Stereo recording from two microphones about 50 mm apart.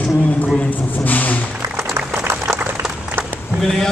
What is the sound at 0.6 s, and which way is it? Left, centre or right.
Speech, left.